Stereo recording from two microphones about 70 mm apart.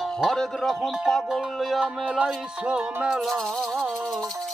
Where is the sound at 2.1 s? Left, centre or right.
Centre.